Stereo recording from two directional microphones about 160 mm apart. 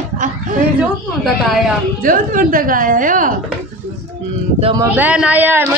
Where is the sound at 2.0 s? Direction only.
60° right (ahead or behind).